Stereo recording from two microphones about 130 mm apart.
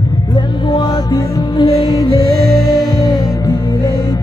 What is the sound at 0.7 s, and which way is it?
Music, 35° left (ahead or behind).